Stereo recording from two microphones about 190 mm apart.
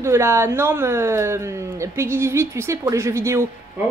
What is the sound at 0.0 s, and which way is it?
A woman's voice, 15° right (ahead or behind).